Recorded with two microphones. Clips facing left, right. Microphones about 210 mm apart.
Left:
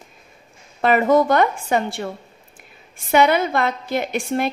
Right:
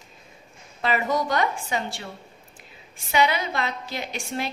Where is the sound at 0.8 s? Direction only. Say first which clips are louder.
Left 9 dB; 55° left (ahead or behind).